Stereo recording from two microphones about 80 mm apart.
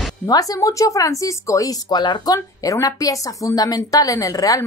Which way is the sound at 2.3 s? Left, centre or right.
Left.